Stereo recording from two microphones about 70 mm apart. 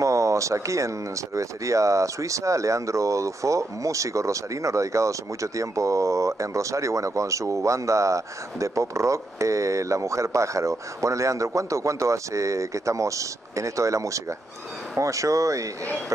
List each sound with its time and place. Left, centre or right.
0.0 s speech: right